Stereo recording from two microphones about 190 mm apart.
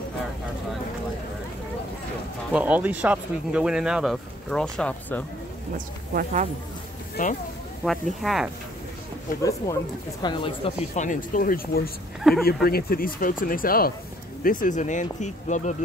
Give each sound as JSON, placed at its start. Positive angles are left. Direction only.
{"t": 2.5, "sound": "speech", "side_deg": -10}
{"t": 6.1, "sound": "speech", "side_deg": -40}
{"t": 7.2, "sound": "speech", "side_deg": 45}
{"t": 7.8, "sound": "speech", "side_deg": 0}
{"t": 9.4, "sound": "speech", "side_deg": 15}
{"t": 11.0, "sound": "speech", "side_deg": 45}
{"t": 12.2, "sound": "speech", "side_deg": 0}
{"t": 12.6, "sound": "speech", "side_deg": 50}